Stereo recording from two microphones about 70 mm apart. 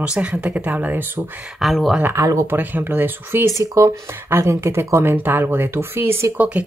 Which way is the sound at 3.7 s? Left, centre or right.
Right.